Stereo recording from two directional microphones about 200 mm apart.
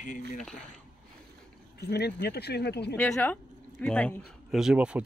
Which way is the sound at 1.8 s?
55° left (ahead or behind).